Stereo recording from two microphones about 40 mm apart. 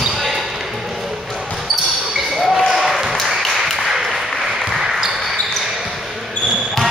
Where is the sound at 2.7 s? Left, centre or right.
Centre.